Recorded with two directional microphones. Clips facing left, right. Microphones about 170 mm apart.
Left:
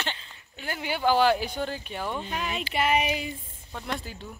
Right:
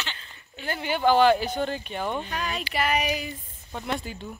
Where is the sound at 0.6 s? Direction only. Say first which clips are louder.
Right 3 dB; 5° left (ahead or behind).